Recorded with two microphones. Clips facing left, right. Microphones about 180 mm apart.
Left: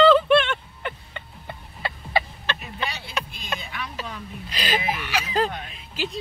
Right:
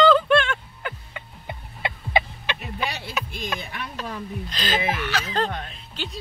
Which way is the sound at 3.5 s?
55° right (ahead or behind).